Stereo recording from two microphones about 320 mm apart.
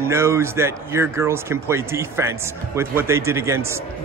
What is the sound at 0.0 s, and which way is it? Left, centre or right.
A man's voice, centre.